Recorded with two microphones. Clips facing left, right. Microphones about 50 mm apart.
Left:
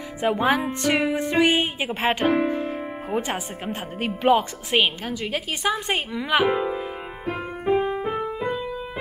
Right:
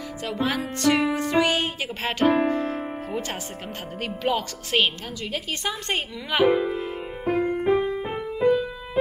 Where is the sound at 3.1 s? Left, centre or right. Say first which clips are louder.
Left 4 dB; centre.